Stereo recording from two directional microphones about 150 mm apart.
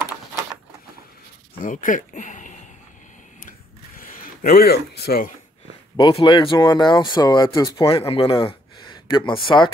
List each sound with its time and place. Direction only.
1.6 s speech: 60° left (ahead or behind)
4.4 s speech: 85° left
5.9 s speech: 30° left (ahead or behind)